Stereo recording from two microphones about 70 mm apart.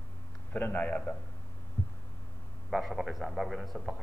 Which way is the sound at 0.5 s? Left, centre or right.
Left.